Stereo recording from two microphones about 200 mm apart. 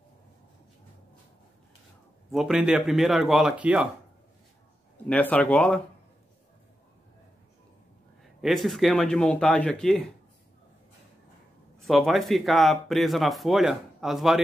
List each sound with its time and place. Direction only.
2.3 s speech: 5° right (ahead or behind)
5.0 s speech: 5° left (ahead or behind)
8.4 s speech: centre (ahead or behind)
11.8 s speech: centre (ahead or behind)